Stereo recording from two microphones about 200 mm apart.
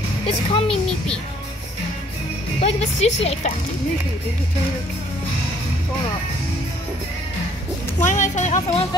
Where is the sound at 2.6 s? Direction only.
30° left (ahead or behind).